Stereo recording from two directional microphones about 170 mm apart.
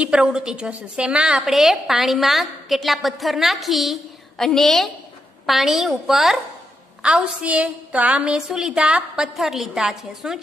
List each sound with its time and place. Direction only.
0.0 s a woman's voice: 5° right (ahead or behind)